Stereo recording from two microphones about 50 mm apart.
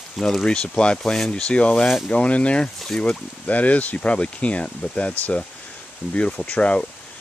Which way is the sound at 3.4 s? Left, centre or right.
Left.